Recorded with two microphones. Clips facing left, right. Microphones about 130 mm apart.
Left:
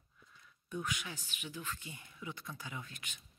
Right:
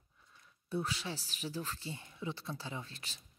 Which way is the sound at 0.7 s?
35° right (ahead or behind).